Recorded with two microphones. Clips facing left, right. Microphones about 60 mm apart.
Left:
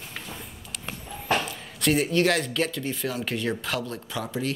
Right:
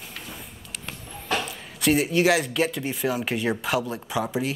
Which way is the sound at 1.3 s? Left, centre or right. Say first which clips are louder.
Left 2 dB; centre.